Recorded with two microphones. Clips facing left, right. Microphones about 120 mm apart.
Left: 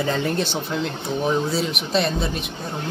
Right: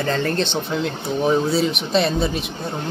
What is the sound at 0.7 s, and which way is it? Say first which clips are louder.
A man's voice: right 2 dB; centre (ahead or behind).